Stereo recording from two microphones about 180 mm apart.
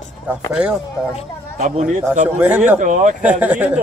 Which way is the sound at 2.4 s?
10° right (ahead or behind).